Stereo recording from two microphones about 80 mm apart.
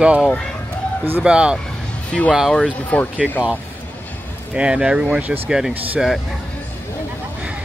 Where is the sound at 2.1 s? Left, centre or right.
Centre.